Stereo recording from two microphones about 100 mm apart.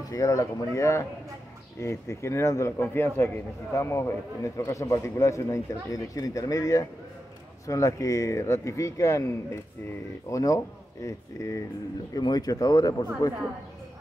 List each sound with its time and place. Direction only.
0.1 s speech: 35° left (ahead or behind)
12.1 s speech: 40° left (ahead or behind)